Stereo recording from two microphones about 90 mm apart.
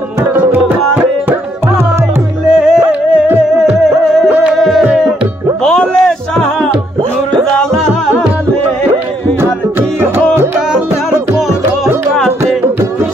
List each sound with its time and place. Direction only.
0.2 s tabla: 20° right (ahead or behind)
2.5 s music: 5° right (ahead or behind)
9.4 s music: 25° right (ahead or behind)
10.7 s music: 5° right (ahead or behind)